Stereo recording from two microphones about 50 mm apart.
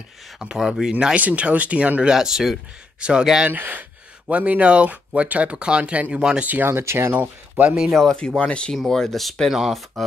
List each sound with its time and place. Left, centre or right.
0.4 s speech: centre
1.1 s speech: right
2.1 s speech: centre
3.0 s speech: centre
3.4 s speech: right
6.6 s speech: right
7.2 s speech: right
7.9 s speech: centre
8.4 s speech: left
8.7 s speech: centre
9.5 s speech: centre